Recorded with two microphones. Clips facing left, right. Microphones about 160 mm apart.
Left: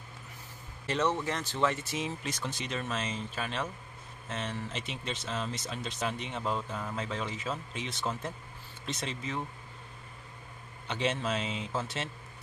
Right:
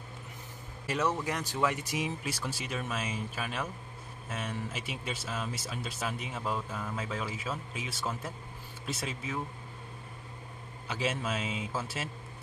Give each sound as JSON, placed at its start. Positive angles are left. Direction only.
{"t": 0.8, "sound": "speech", "side_deg": -10}
{"t": 10.9, "sound": "speech", "side_deg": -5}